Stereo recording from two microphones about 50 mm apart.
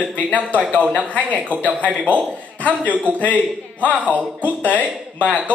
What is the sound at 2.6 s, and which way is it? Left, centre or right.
A man's voice, left.